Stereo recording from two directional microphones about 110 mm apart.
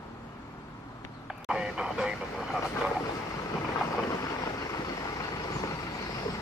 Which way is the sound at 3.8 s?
30° left (ahead or behind).